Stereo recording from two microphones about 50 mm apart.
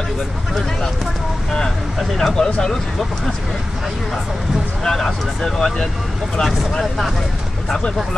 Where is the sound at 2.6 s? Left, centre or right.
Centre.